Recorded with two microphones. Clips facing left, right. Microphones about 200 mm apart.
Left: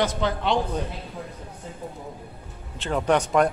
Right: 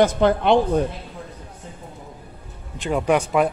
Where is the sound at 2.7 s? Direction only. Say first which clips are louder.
Right 2 dB; 10° right (ahead or behind).